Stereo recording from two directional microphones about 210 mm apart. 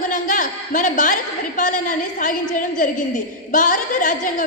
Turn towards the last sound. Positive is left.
turn(degrees=40)  # may be behind; listen again after turning